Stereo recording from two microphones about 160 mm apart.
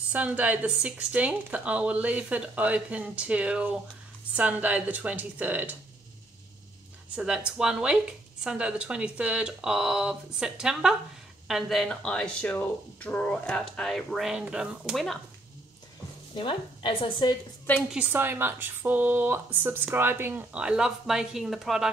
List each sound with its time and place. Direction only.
0.1 s speech: 10° right (ahead or behind)
7.2 s speech: 5° right (ahead or behind)
16.3 s speech: 30° left (ahead or behind)
17.8 s speech: 10° right (ahead or behind)